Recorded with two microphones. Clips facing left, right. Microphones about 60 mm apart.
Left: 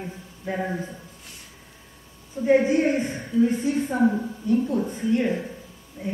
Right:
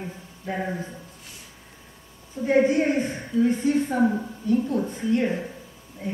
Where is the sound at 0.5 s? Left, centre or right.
Centre.